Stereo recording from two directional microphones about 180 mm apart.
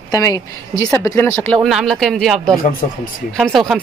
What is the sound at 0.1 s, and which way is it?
Speech, 20° left (ahead or behind).